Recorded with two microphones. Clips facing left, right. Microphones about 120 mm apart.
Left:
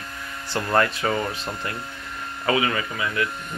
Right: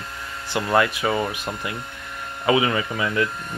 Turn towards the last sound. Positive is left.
turn(degrees=-25)  # may be behind; listen again after turning